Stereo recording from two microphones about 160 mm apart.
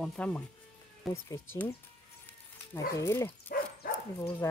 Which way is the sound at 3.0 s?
20° left (ahead or behind).